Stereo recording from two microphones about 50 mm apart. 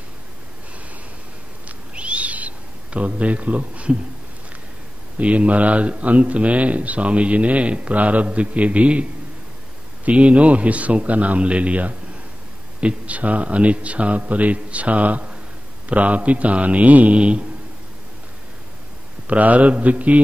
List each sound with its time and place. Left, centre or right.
2.0 s owl: right
5.1 s speech: right
10.0 s speech: right
19.2 s speech: right